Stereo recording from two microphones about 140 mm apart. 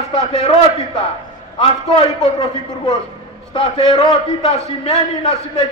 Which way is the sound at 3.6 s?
40° left (ahead or behind).